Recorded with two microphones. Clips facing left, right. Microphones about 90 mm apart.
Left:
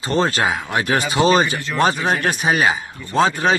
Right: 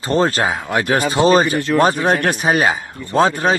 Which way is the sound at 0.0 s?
40° right (ahead or behind).